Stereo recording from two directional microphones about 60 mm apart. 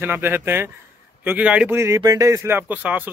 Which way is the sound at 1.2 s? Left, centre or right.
Right.